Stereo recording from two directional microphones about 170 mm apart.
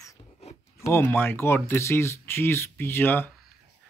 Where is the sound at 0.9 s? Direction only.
15° left (ahead or behind).